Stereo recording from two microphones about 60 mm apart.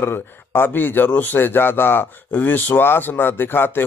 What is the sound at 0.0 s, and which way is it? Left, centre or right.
A man's voice, left.